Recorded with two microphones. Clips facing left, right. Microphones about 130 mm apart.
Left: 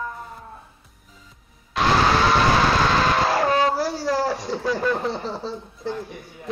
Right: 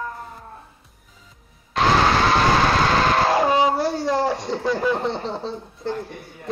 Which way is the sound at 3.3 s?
15° right (ahead or behind).